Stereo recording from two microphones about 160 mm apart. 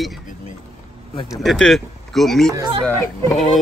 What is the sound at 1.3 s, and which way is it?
Speech, centre (ahead or behind).